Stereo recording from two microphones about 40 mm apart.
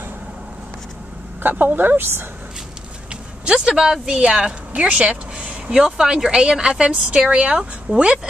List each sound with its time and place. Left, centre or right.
1.4 s speech: right
3.4 s speech: right
4.2 s speech: right